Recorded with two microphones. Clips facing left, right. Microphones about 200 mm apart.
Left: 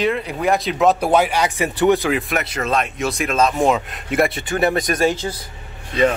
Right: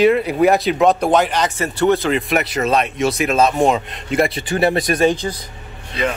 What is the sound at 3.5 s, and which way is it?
Speech, 35° right (ahead or behind).